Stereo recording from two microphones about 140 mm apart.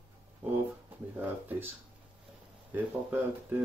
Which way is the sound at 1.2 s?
15° right (ahead or behind).